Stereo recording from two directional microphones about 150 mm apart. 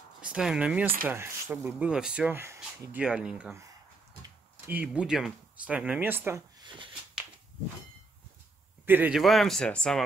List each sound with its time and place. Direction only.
0.2 s speech: 5° right (ahead or behind)
4.9 s speech: 5° right (ahead or behind)
6.6 s speech: 35° right (ahead or behind)
8.8 s speech: 10° right (ahead or behind)
9.2 s speech: centre (ahead or behind)